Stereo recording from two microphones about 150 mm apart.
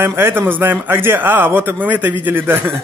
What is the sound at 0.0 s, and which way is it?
Speech, 15° right (ahead or behind).